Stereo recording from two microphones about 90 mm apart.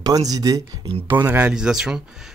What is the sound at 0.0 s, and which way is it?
Speech, 45° right (ahead or behind).